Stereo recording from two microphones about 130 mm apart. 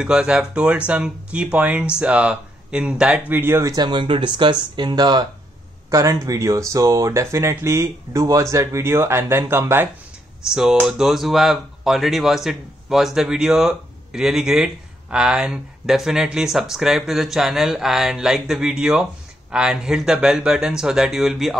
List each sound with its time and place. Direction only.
0.0 s speech: 5° right (ahead or behind)
3.7 s speech: 35° right (ahead or behind); by 9.8 s 20° right (ahead or behind)
10.4 s speech: 5° right (ahead or behind)